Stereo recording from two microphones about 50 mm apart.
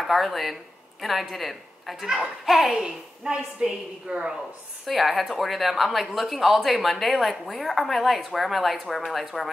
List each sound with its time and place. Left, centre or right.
0.0 s speech: centre
2.0 s a woman's voice: centre
2.7 s a woman's voice: centre
4.8 s speech: centre